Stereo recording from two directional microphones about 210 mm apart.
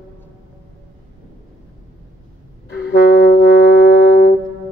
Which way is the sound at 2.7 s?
50° left (ahead or behind).